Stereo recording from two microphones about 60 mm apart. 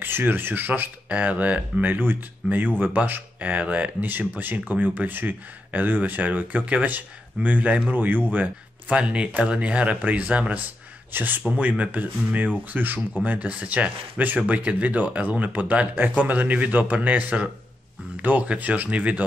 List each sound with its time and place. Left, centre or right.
0.0 s speech: right
8.8 s speech: right
11.1 s speech: right